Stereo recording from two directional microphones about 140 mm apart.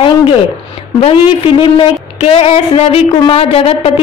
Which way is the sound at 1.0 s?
45° left (ahead or behind).